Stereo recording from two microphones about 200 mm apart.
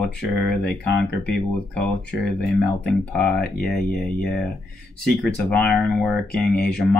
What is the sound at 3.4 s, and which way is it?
Speech, 50° left (ahead or behind).